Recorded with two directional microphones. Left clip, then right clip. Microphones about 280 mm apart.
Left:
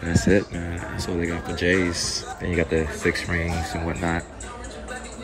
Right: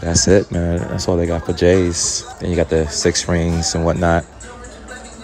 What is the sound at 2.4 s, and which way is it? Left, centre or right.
Speech, centre.